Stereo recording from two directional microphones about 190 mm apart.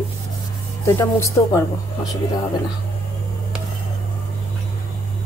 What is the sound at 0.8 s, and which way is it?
Speech, 15° left (ahead or behind).